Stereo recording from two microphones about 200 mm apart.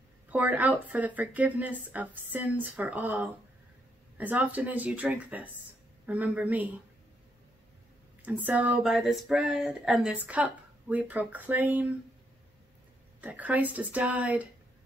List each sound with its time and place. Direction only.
0.3 s speech: 5° right (ahead or behind)
8.3 s speech: 10° right (ahead or behind)
13.2 s speech: 10° right (ahead or behind)